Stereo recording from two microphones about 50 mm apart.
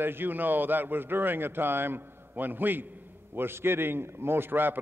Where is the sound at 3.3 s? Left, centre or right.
Right.